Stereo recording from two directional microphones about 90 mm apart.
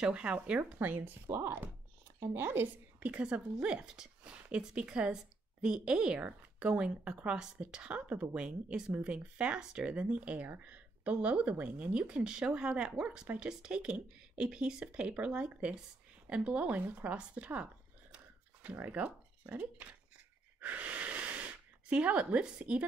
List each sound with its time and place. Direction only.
0.0 s speech: 10° right (ahead or behind)
18.1 s a sound: 15° right (ahead or behind)
20.6 s wheeze: 15° right (ahead or behind)